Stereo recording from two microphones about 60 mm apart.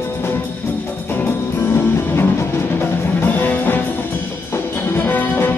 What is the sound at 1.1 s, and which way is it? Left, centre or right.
Music, left.